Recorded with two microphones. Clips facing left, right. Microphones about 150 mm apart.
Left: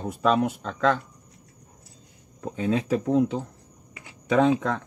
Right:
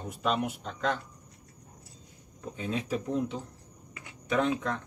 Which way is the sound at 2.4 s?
90° left.